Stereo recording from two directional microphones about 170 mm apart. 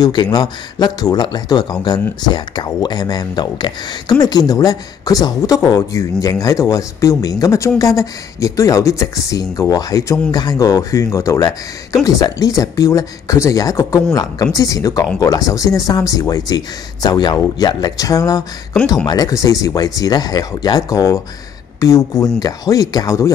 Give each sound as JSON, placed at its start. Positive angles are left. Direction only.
{"t": 0.0, "sound": "speech", "side_deg": 25}